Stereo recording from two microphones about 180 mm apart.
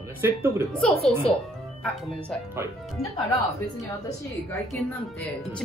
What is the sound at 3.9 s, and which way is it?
Speech, 20° left (ahead or behind).